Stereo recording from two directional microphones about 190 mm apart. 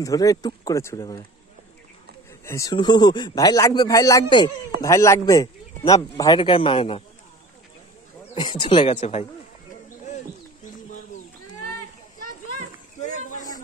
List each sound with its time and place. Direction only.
0.0 s speech: 20° left (ahead or behind)
2.4 s speech: 15° left (ahead or behind)
8.4 s speech: 25° left (ahead or behind)
10.0 s bird: 40° left (ahead or behind)
13.0 s a sound: 40° left (ahead or behind)